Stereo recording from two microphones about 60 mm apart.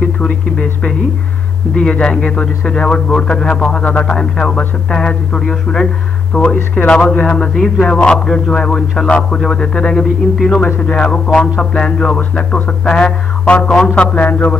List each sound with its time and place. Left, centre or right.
0.0 s a man's voice: centre
6.5 s music: left
6.9 s a man's voice: centre
10.8 s music: centre
11.7 s a man's voice: centre
14.1 s music: left